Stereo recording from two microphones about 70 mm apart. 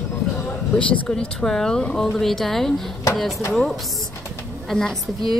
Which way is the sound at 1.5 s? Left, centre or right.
Centre.